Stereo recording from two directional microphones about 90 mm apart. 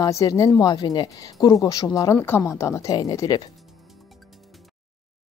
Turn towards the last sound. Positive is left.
turn(degrees=45)  # may be behind; listen again after turning